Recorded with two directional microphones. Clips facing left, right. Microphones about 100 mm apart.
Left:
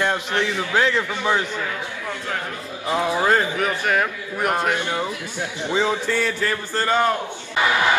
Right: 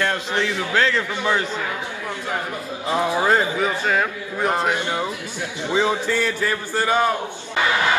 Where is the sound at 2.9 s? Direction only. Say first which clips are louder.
Even; 15° right (ahead or behind).